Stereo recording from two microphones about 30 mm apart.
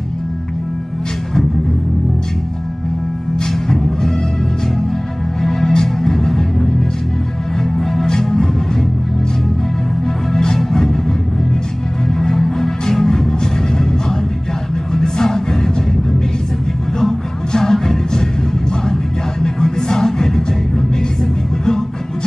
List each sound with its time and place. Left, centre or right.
3.7 s music: centre
5.4 s music: centre
8.1 s music: left
10.3 s music: centre
12.1 s music: centre
15.0 s music: centre
19.4 s music: centre